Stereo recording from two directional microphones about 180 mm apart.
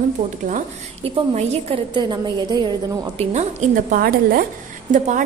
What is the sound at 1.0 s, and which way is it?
A woman's voice, 35° right (ahead or behind).